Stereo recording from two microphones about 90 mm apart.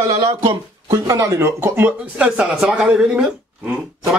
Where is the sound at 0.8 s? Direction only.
40° right (ahead or behind).